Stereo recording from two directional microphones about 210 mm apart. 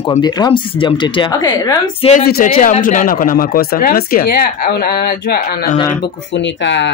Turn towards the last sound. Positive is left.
turn(degrees=60)  # may be behind; listen again after turning